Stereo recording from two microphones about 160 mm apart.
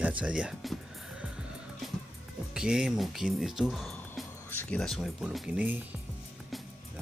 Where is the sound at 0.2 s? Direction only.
5° right (ahead or behind).